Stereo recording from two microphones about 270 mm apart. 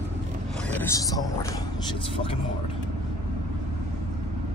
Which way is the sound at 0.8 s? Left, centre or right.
Centre.